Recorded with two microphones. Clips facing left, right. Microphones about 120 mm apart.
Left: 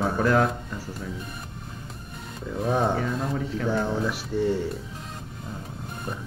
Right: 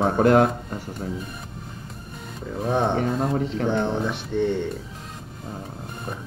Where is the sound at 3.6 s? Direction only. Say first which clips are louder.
Even; 30° right (ahead or behind).